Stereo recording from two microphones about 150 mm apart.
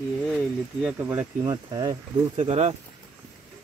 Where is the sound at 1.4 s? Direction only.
25° right (ahead or behind).